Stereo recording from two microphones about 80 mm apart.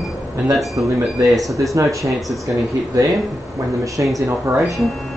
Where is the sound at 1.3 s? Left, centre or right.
Centre.